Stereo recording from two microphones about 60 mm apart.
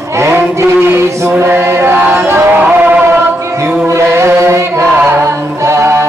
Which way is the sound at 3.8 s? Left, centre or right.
Right.